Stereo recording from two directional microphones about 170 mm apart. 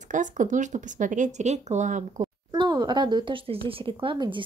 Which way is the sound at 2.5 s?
25° right (ahead or behind).